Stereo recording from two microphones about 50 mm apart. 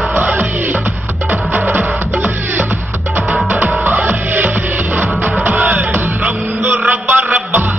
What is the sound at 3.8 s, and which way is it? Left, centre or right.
Music, right.